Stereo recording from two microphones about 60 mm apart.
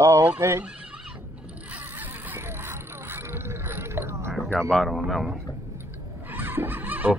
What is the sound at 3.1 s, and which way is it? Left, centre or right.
Mechanisms, right.